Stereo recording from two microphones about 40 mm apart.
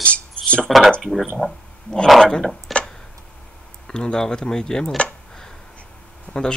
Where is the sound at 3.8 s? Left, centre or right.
Centre.